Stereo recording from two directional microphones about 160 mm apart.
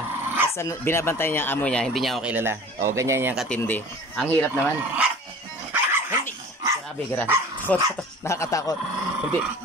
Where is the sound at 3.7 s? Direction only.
10° left (ahead or behind).